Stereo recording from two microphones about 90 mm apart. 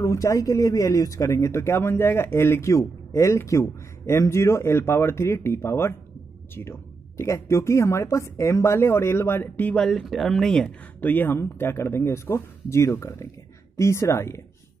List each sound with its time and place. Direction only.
0.0 s a woman's voice: 40° left (ahead or behind)
9.6 s speech: 15° left (ahead or behind)
9.8 s speech: 5° left (ahead or behind)
11.0 s a woman's voice: 20° left (ahead or behind)